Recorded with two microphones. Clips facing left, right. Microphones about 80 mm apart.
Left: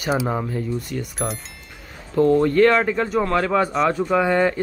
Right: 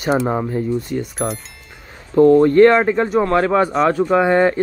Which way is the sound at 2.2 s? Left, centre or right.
Right.